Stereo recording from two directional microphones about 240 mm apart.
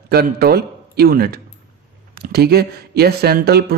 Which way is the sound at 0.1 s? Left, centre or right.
Right.